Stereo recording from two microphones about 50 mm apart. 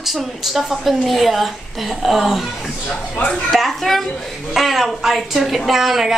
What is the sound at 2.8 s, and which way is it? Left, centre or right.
Speech, left.